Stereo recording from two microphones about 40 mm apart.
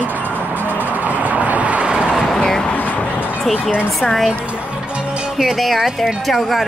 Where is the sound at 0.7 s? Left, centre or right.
Right.